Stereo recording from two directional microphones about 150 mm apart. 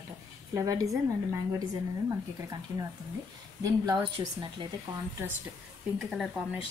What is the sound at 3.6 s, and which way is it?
Speech, 25° right (ahead or behind).